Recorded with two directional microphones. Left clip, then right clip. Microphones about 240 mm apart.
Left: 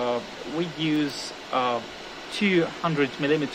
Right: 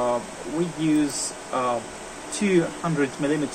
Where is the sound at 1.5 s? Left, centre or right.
Left.